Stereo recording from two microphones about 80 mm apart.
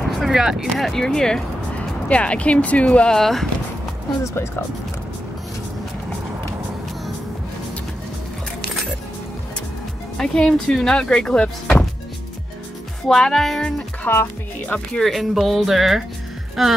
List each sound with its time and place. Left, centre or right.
0.1 s speech: centre
3.2 s speech: centre
4.2 s speech: left
10.1 s speech: centre
13.1 s speech: centre
14.1 s speech: left
15.0 s speech: centre